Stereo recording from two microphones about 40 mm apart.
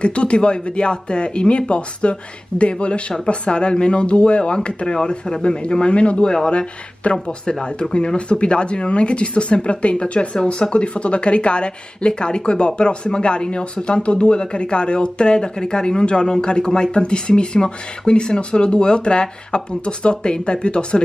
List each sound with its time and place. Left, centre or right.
0.0 s speech: left